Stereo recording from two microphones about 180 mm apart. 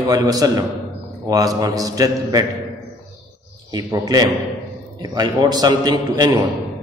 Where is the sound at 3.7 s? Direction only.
20° right (ahead or behind).